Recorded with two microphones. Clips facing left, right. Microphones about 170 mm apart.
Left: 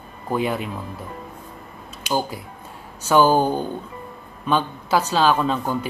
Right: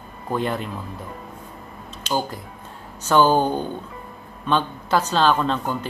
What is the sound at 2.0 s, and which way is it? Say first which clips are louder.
Speech: left 1 dB; 10° left (ahead or behind).